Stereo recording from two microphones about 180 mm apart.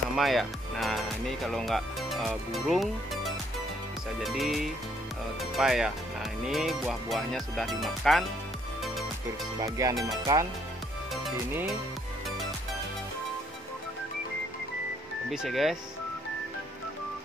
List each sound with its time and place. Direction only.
0.1 s speech: centre (ahead or behind)
4.2 s music: centre (ahead or behind)
9.6 s speech: 20° right (ahead or behind)
15.3 s music: centre (ahead or behind)